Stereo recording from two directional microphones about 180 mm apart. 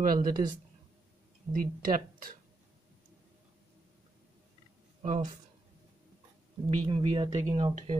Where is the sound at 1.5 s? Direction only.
50° right (ahead or behind).